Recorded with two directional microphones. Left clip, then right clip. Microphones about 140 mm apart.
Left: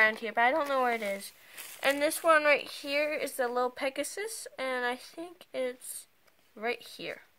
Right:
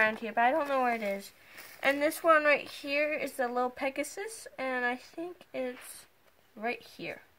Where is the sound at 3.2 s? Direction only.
35° left (ahead or behind).